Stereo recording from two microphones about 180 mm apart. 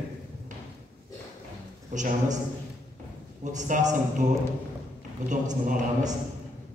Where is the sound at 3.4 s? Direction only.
40° right (ahead or behind).